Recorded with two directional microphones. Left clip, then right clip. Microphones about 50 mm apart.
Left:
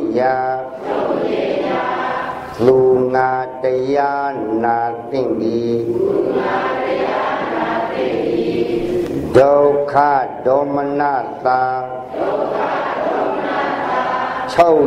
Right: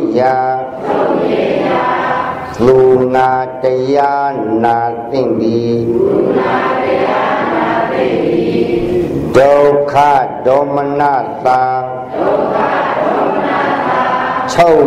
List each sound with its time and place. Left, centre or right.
0.1 s speech: right
0.9 s choir: right
2.6 s mantra: right
6.5 s choir: right
9.3 s mantra: right
12.5 s chant: right